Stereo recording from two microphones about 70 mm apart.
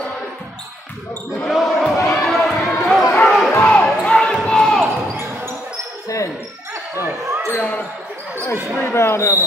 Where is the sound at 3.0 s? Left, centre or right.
Left.